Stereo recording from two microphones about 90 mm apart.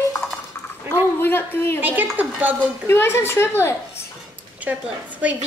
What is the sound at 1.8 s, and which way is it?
Speech, 20° right (ahead or behind).